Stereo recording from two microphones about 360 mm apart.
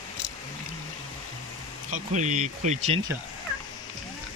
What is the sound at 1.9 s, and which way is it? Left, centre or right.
Speech, right.